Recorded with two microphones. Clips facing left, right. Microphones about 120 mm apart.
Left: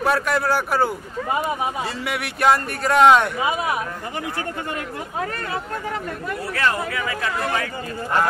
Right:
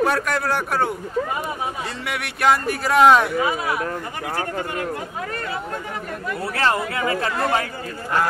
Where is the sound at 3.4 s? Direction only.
20° left (ahead or behind).